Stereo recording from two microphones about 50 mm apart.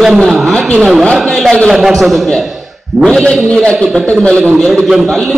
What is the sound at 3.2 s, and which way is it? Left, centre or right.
Speech, centre.